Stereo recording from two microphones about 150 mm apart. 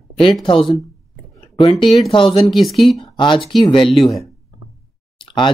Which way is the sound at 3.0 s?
30° left (ahead or behind).